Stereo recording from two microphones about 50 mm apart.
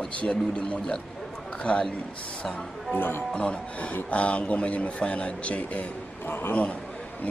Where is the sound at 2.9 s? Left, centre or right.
Left.